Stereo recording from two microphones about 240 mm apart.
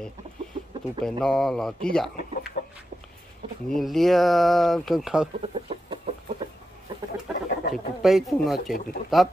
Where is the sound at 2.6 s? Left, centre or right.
Left.